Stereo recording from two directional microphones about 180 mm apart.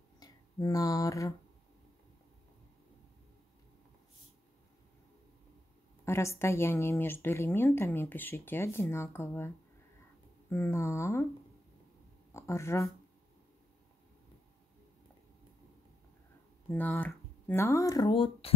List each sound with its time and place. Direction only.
0.2 s speech: 20° left (ahead or behind)
6.0 s speech: 15° left (ahead or behind)
10.5 s speech: 15° left (ahead or behind)
12.4 s speech: 15° left (ahead or behind)
16.7 s speech: 10° left (ahead or behind); by 18.5 s 30° left (ahead or behind)